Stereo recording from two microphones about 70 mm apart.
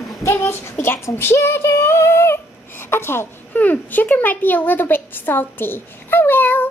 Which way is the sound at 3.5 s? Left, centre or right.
Left.